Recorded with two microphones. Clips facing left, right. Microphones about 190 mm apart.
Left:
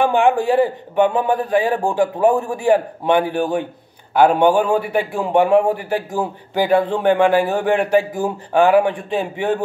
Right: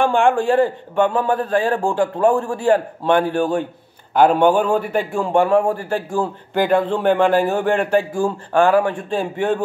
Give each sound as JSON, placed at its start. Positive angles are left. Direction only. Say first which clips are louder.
{"t": 0.0, "sound": "a man's voice", "louder": "left 1 dB", "side_deg": 15}
{"t": 5.9, "sound": "a man's voice", "louder": "even", "side_deg": 10}